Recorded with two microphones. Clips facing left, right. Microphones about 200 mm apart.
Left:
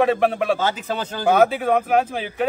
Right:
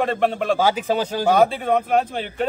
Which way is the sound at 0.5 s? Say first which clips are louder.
Right 4 dB; 10° right (ahead or behind).